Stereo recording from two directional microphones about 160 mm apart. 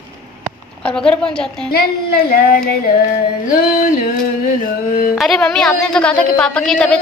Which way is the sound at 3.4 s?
60° left (ahead or behind).